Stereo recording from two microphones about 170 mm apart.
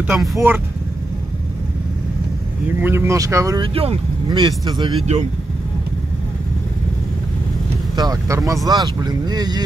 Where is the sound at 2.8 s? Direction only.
15° right (ahead or behind).